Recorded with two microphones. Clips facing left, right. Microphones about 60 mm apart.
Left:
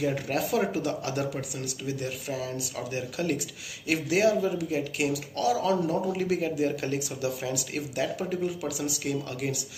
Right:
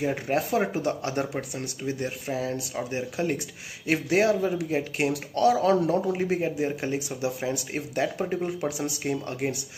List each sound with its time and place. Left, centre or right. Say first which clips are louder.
0.0 s speech: right 2 dB; right